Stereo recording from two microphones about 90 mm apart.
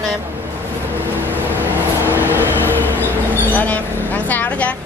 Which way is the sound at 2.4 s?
20° left (ahead or behind).